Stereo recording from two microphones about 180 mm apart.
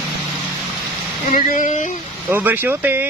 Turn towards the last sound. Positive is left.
turn(degrees=-10)  # may be behind; listen again after turning